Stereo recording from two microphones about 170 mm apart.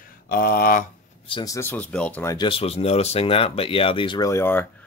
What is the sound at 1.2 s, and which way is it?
Speech, 30° left (ahead or behind).